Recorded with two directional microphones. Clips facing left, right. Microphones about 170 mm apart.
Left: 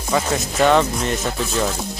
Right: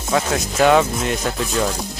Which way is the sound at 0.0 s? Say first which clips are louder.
Right 1 dB; centre (ahead or behind).